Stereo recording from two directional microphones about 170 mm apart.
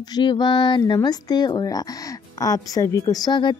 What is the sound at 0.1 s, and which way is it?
Speech, 25° left (ahead or behind).